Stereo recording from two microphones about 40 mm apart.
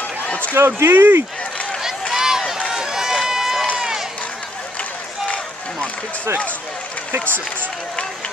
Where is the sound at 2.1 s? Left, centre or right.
Centre.